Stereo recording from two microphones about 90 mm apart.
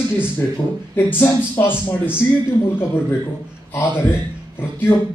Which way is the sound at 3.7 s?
20° left (ahead or behind).